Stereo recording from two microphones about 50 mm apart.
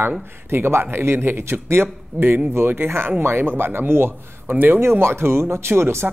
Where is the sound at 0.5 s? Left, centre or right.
Right.